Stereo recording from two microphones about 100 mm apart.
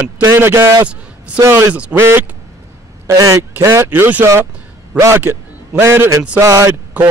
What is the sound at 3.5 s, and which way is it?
A man's voice, 25° right (ahead or behind).